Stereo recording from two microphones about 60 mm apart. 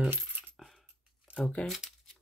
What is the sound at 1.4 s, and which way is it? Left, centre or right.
Speech, centre.